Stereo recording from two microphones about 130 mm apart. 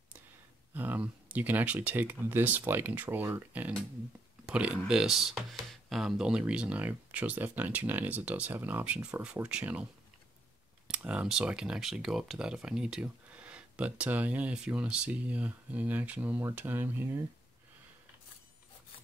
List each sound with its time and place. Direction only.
0.7 s speech: 15° right (ahead or behind)
10.9 s speech: 10° right (ahead or behind)